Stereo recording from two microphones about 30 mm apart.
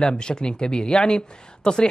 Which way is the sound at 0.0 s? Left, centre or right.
Left.